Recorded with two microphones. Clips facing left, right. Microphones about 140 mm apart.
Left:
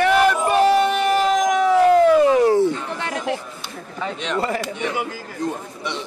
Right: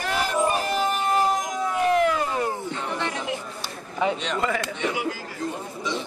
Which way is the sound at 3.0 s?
55° left (ahead or behind).